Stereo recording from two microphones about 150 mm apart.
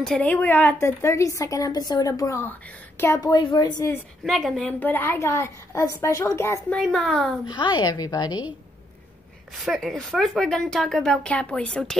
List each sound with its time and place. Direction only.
0.0 s a woman's voice: 5° left (ahead or behind); by 3.9 s 25° left (ahead or behind)
4.2 s speech: centre (ahead or behind)
4.7 s a woman's voice: 15° left (ahead or behind)
6.7 s speech: centre (ahead or behind)
7.4 s a woman's voice: 30° left (ahead or behind)
9.6 s speech: centre (ahead or behind)